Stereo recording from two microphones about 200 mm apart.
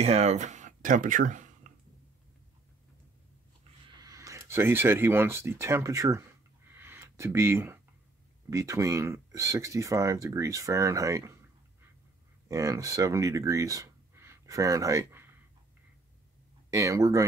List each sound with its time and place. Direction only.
0.0 s speech: 30° right (ahead or behind)
4.0 s speech: 15° right (ahead or behind)
6.7 s a sound: 10° right (ahead or behind)
8.5 s speech: 15° right (ahead or behind)
12.4 s speech: 15° right (ahead or behind)
16.7 s speech: 15° right (ahead or behind)